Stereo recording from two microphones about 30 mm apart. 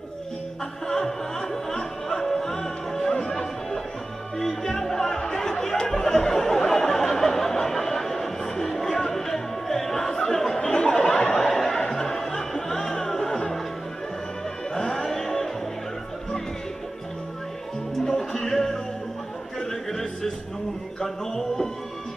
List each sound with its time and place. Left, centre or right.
0.8 s music: centre
4.4 s chatter: centre
11.3 s a sound: centre
11.9 s music: centre
14.7 s music: centre
18.0 s music: left
18.4 s music: centre